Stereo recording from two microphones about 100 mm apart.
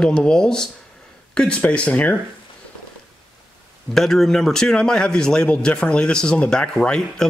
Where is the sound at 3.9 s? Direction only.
5° left (ahead or behind).